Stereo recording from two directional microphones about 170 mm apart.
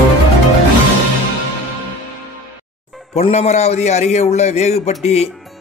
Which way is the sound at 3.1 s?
40° left (ahead or behind).